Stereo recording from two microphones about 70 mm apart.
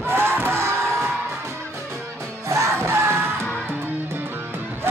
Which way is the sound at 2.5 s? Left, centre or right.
Right.